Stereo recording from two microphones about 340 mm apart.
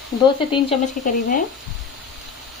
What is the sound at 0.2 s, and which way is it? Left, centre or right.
Speech, centre.